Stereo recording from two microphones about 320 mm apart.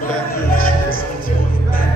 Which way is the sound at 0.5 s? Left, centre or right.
Left.